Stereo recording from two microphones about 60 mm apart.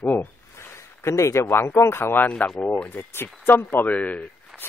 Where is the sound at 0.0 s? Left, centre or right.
Left.